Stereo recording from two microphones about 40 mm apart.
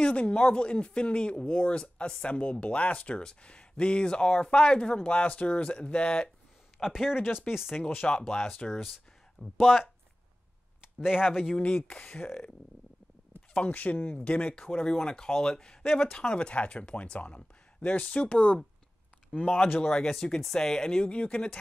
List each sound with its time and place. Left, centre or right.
0.0 s speech: left
2.3 s speech: left
6.8 s speech: centre
8.1 s speech: centre
8.7 s speech: centre
11.9 s speech: left
13.6 s speech: left
14.7 s speech: centre; by 18.6 s left
19.8 s speech: left